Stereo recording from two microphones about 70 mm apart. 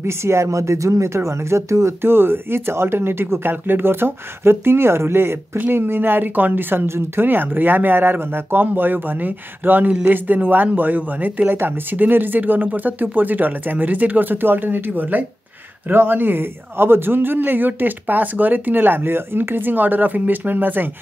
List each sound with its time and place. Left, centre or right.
0.0 s a man's voice: right